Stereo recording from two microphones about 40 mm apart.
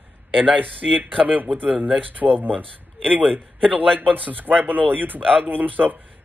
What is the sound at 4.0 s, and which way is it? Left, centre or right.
A man's voice, right.